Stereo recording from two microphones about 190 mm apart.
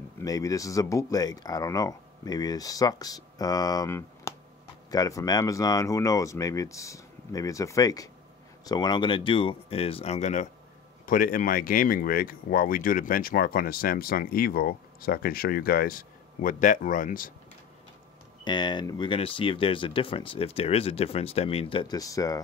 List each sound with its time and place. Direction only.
0.2 s speech: 20° left (ahead or behind); by 17.3 s 45° left (ahead or behind)
18.4 s speech: 25° left (ahead or behind)